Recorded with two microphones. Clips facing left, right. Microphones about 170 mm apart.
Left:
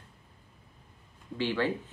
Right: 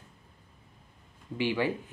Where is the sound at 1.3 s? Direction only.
15° right (ahead or behind).